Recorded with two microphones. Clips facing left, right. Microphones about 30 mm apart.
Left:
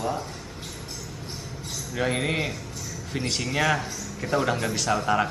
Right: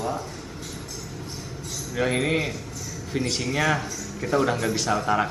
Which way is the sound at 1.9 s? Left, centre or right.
Centre.